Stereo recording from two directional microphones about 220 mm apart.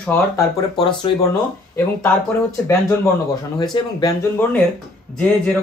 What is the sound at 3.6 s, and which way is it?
Speech, 20° left (ahead or behind).